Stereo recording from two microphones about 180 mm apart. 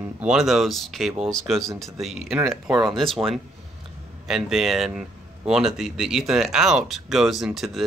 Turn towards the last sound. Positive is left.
turn(degrees=0)  # may be behind; listen again after turning